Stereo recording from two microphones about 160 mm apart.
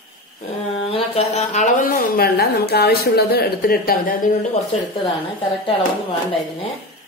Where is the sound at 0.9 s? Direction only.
40° left (ahead or behind).